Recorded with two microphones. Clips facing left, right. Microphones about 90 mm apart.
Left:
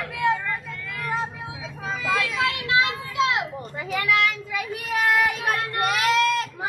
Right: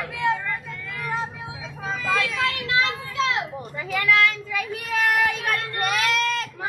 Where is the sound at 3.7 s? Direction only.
30° left (ahead or behind).